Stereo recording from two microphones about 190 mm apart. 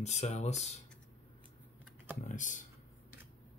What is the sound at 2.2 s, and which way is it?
Speech, 40° left (ahead or behind).